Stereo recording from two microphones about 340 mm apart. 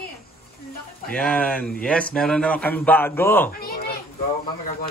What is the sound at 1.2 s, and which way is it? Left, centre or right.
Speech, centre.